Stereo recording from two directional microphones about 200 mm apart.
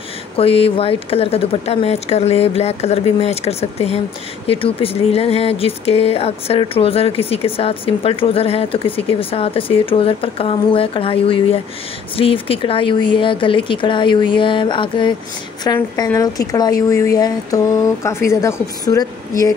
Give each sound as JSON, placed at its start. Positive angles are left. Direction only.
{"t": 0.4, "sound": "speech", "side_deg": 30}